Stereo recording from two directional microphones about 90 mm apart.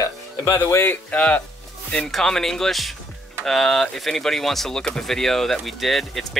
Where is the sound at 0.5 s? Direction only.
30° left (ahead or behind).